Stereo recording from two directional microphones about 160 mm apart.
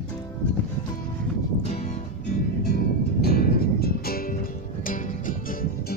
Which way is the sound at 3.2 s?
70° left (ahead or behind).